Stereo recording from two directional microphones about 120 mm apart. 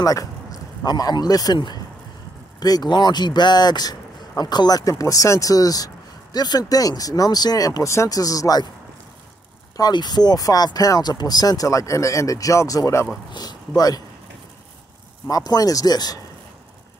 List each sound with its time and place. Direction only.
0.0 s speech: 30° left (ahead or behind)
9.8 s speech: 35° left (ahead or behind)
15.2 s speech: 30° left (ahead or behind)